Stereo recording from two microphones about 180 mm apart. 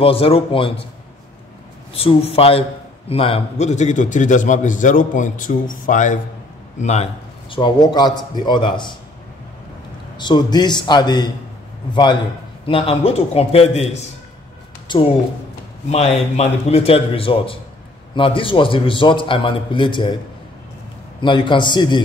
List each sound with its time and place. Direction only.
0.0 s a man's voice: 30° left (ahead or behind)
2.0 s a man's voice: 35° left (ahead or behind)
7.5 s a man's voice: 25° left (ahead or behind)
10.1 s a man's voice: 25° left (ahead or behind)
15.9 s a man's voice: 35° left (ahead or behind)
21.2 s a man's voice: 25° left (ahead or behind)